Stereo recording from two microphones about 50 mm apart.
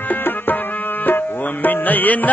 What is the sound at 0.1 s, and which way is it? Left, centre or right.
Music, left.